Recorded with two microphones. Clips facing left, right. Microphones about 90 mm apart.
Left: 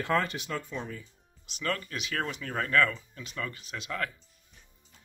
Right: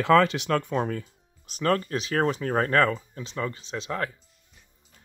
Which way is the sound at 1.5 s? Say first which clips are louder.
Right 9 dB; 40° right (ahead or behind).